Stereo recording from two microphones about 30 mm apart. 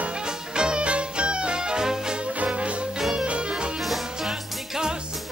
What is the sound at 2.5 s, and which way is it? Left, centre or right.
Music, right.